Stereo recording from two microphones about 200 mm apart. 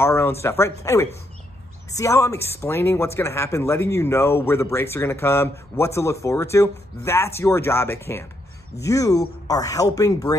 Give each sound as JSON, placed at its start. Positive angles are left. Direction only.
{"t": 0.0, "sound": "speech", "side_deg": 10}